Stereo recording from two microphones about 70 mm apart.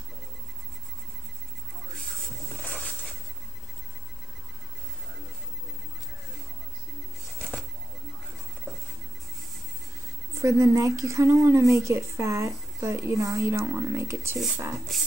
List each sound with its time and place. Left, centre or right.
10.4 s speech: right
14.9 s speech: centre